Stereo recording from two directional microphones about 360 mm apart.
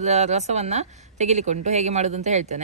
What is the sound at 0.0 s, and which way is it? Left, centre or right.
A woman's voice, centre.